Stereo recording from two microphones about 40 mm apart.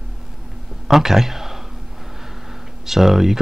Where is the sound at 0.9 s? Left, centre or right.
Centre.